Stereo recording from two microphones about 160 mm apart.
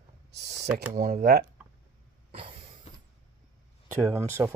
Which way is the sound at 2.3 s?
40° right (ahead or behind).